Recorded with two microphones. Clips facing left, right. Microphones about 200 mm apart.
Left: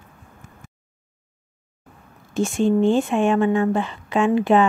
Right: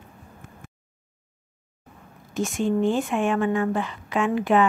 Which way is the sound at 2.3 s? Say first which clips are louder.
Left 5 dB; 25° left (ahead or behind).